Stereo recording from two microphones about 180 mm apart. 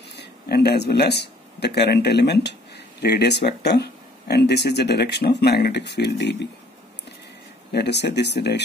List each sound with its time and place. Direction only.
0.2 s speech: 65° left (ahead or behind)
7.7 s speech: 70° left (ahead or behind)